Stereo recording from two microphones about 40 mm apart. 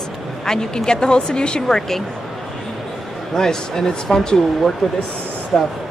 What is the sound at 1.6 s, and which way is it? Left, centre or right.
Speech, centre.